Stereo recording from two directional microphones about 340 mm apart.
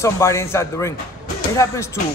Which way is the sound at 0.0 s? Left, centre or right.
Centre.